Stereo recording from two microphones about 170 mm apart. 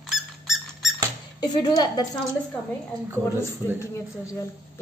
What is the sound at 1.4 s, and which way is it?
Speech, 25° left (ahead or behind).